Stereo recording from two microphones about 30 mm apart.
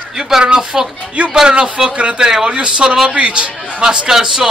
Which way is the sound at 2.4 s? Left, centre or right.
Right.